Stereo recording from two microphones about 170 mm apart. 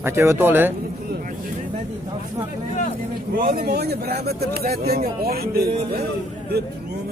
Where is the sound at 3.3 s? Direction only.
60° right (ahead or behind).